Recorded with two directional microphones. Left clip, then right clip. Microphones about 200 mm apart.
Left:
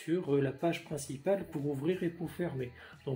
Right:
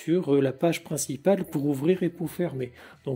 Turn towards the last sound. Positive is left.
turn(degrees=-40)  # may be behind; listen again after turning